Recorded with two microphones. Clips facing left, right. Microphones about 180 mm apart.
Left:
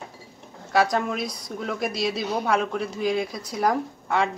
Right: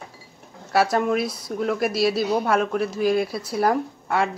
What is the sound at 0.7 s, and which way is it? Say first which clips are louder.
A woman's voice: right 2 dB; 5° right (ahead or behind).